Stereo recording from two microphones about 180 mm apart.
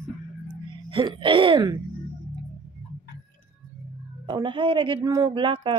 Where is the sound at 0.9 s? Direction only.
25° right (ahead or behind).